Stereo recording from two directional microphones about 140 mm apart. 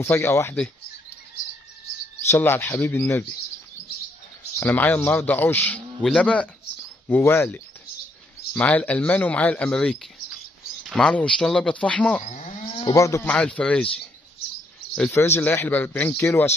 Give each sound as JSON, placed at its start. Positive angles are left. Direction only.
{"t": 0.0, "sound": "speech", "side_deg": 20}
{"t": 2.2, "sound": "speech", "side_deg": 15}
{"t": 4.6, "sound": "speech", "side_deg": 15}
{"t": 12.2, "sound": "livestock", "side_deg": 60}
{"t": 12.6, "sound": "a sound", "side_deg": 35}
{"t": 12.9, "sound": "speech", "side_deg": 20}
{"t": 13.2, "sound": "speech", "side_deg": 10}
{"t": 15.0, "sound": "speech", "side_deg": 15}